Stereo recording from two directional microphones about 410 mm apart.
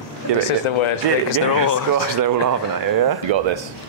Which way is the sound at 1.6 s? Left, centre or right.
Right.